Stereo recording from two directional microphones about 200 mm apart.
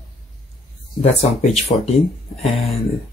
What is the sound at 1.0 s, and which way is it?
Speech, 35° left (ahead or behind).